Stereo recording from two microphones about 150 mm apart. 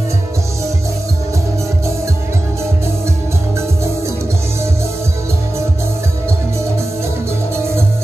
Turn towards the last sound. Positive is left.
turn(degrees=-15)  # may be behind; listen again after turning